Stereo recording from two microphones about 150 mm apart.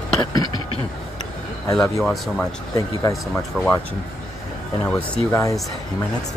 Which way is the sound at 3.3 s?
5° left (ahead or behind).